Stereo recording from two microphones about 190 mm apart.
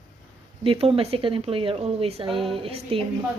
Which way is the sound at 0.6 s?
30° right (ahead or behind).